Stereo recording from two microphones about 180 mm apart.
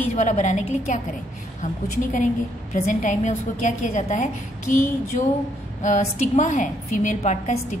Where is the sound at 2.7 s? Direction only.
45° left (ahead or behind).